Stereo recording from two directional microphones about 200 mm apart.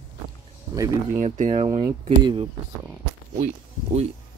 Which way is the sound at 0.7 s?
15° right (ahead or behind).